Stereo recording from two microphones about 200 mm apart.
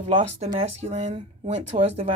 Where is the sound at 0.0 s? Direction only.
35° right (ahead or behind).